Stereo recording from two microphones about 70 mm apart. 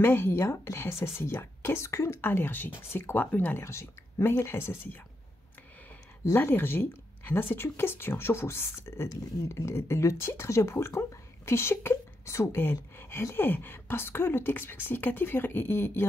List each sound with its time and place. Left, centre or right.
0.0 s speech: left
2.2 s speech: left
3.6 s speech: left
6.3 s speech: left